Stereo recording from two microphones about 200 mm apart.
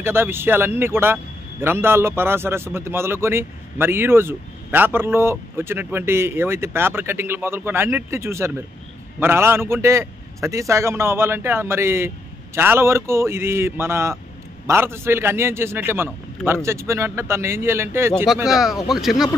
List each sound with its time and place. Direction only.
0.0 s a man's voice: 10° right (ahead or behind)
18.2 s speech: centre (ahead or behind)